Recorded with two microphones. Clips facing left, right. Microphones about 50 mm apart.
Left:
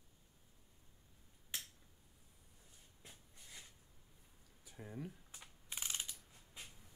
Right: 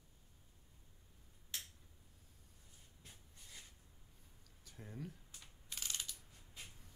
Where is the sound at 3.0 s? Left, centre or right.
Centre.